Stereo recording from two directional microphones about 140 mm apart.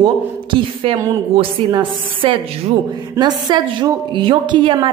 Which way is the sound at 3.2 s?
20° right (ahead or behind).